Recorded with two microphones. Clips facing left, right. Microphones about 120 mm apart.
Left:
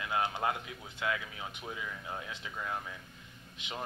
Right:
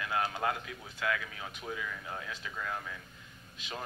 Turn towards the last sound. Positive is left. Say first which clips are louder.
# even
turn(degrees=20)  # may be behind; listen again after turning